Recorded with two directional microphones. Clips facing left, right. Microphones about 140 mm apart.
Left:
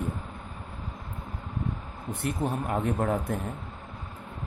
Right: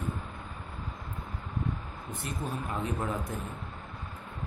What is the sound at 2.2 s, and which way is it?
Speech, 60° left (ahead or behind).